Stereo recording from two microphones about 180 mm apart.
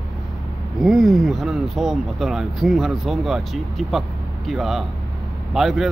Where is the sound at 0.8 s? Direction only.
Centre (ahead or behind).